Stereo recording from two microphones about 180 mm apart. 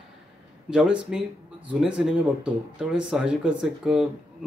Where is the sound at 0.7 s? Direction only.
5° right (ahead or behind).